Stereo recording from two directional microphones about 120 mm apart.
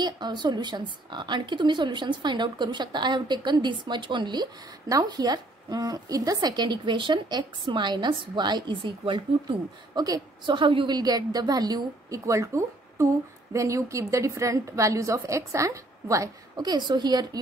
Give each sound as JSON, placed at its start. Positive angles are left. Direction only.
{"t": 0.0, "sound": "a woman's voice", "side_deg": -35}